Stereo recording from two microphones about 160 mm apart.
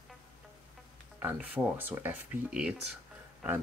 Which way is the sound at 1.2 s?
10° right (ahead or behind).